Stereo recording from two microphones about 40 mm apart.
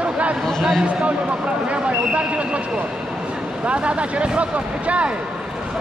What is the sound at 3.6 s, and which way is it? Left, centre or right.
Speech, right.